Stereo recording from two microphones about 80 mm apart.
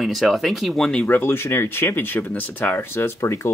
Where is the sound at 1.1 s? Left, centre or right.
Left.